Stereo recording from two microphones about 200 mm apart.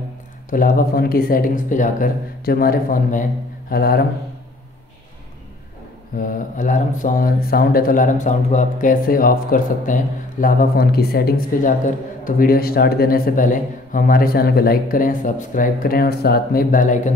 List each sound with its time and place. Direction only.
0.5 s a man's voice: 45° left (ahead or behind)
6.1 s a man's voice: 40° left (ahead or behind)